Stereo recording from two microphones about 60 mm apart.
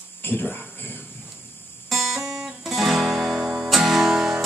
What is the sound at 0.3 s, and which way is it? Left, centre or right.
Speech, left.